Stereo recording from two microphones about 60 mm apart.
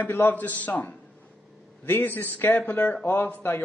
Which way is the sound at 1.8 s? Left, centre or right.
Left.